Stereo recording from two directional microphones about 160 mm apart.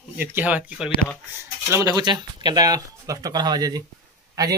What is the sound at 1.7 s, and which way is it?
Speech, 20° right (ahead or behind).